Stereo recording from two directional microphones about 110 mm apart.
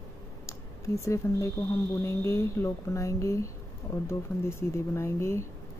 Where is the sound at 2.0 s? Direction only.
25° left (ahead or behind).